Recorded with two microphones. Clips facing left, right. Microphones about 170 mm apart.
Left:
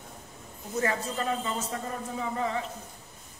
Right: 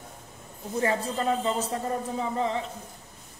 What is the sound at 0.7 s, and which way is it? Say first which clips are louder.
Speech: right 3 dB; 30° right (ahead or behind).